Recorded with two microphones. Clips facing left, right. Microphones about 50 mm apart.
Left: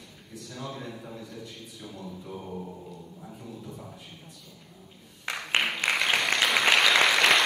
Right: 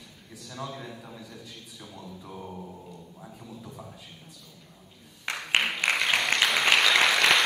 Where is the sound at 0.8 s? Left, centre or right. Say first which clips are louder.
Left 2 dB; centre.